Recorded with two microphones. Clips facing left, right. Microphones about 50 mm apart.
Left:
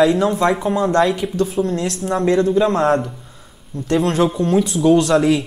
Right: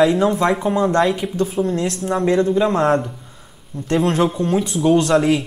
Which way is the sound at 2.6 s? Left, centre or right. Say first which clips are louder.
Left 1 dB; centre.